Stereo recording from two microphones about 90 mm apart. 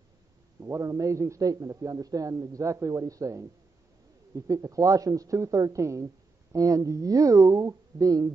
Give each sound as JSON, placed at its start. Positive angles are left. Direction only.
{"t": 0.6, "sound": "a man's voice", "side_deg": -35}